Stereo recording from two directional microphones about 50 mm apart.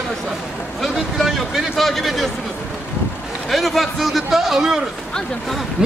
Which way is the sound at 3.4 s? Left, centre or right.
Centre.